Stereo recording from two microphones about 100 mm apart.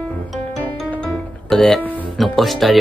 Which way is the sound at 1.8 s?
15° left (ahead or behind).